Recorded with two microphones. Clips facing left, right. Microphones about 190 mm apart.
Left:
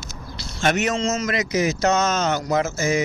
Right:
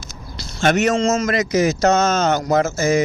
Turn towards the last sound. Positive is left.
turn(degrees=-40)  # may be behind; listen again after turning